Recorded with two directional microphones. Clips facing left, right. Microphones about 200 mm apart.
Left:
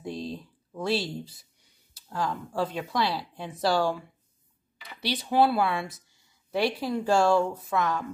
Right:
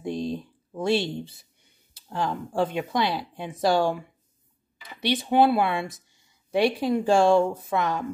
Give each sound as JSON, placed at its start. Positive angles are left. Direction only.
{"t": 0.0, "sound": "a sound", "side_deg": -20}
{"t": 2.0, "sound": "speech", "side_deg": -25}
{"t": 5.0, "sound": "speech", "side_deg": -20}